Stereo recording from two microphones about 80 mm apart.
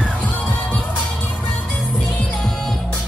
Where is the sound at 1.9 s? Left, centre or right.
Centre.